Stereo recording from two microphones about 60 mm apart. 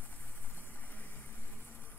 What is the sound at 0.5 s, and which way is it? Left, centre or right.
Vehicle, left.